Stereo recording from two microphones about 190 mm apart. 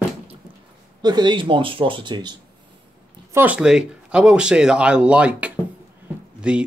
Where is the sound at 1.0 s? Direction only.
25° right (ahead or behind).